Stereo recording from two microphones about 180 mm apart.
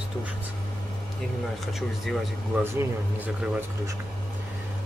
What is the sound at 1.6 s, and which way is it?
Speech, centre (ahead or behind).